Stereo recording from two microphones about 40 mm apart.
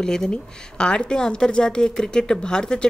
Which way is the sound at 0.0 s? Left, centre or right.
Centre.